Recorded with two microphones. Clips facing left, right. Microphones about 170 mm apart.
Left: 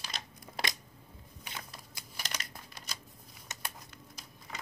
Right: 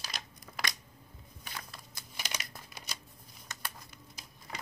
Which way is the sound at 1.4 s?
15° left (ahead or behind).